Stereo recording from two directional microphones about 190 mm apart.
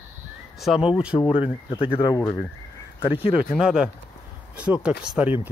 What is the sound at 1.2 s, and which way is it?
Speech, 30° left (ahead or behind).